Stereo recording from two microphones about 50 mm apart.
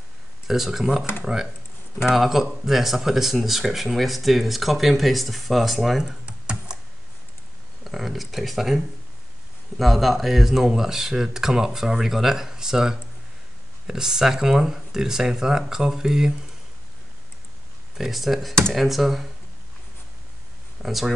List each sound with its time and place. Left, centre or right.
0.5 s speech: centre
6.2 s computer keyboard: right
7.8 s speech: centre
17.9 s speech: centre
20.8 s speech: centre